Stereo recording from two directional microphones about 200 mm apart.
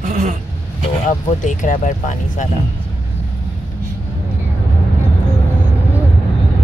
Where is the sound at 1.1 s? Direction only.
40° left (ahead or behind).